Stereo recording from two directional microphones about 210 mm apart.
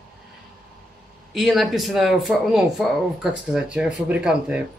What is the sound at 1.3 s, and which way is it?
Speech, centre (ahead or behind).